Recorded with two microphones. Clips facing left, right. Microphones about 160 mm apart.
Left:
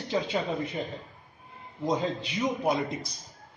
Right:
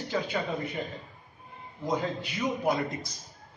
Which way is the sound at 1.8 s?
20° left (ahead or behind).